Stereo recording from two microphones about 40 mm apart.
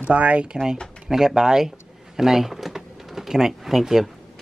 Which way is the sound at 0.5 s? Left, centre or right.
Centre.